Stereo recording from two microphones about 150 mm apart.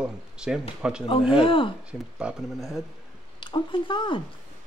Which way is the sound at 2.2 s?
Centre (ahead or behind).